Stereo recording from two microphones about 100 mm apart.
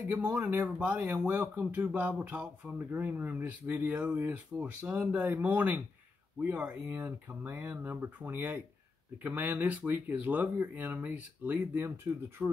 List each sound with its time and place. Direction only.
0.1 s speech: 15° right (ahead or behind)